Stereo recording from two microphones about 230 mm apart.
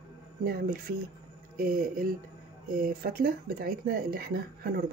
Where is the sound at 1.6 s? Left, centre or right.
Right.